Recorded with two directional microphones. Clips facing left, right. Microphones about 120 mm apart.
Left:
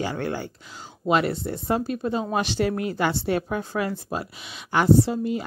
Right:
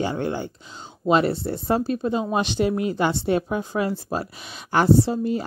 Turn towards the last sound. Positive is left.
turn(degrees=-35)  # may be behind; listen again after turning